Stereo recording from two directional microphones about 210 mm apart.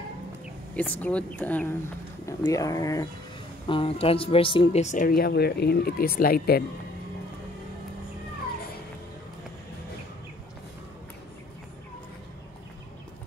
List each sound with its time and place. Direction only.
0.7 s speech: 5° left (ahead or behind); by 6.6 s 45° left (ahead or behind)